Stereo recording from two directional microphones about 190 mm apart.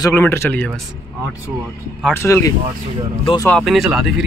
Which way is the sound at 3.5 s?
Centre (ahead or behind).